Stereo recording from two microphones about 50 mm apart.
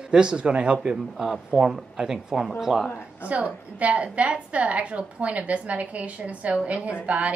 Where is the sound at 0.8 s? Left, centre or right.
Centre.